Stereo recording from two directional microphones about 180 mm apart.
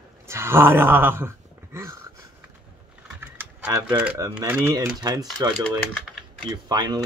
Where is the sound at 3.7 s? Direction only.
20° right (ahead or behind).